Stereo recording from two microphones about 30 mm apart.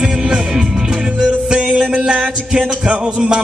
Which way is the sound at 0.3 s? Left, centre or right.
Right.